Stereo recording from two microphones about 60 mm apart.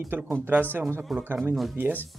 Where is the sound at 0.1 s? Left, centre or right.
Right.